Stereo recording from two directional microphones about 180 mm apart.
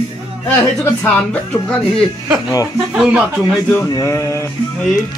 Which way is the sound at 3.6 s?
15° left (ahead or behind).